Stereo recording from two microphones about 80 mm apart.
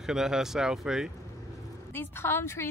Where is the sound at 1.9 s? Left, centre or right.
Left.